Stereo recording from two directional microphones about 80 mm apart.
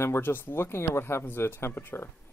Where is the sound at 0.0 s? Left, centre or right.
Left.